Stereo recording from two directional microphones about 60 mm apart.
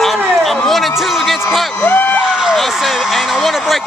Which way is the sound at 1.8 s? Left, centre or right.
Left.